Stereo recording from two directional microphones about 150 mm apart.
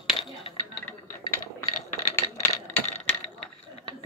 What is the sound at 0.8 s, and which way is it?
Mechanisms, 20° left (ahead or behind).